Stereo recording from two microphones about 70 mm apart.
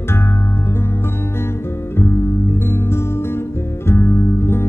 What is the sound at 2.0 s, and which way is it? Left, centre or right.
Music, left.